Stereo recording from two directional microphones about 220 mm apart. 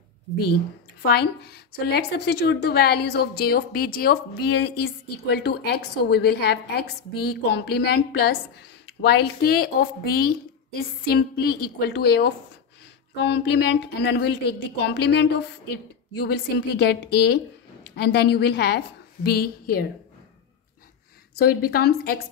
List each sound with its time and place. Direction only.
1.1 s a woman's voice: 45° left (ahead or behind)
21.4 s a woman's voice: 45° left (ahead or behind)